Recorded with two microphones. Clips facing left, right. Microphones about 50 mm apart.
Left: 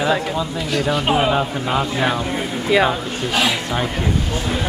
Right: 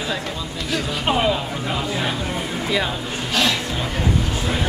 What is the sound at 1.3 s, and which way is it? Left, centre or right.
Speech, left.